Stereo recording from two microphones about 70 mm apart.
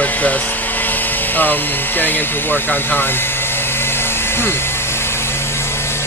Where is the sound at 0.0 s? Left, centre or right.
Left.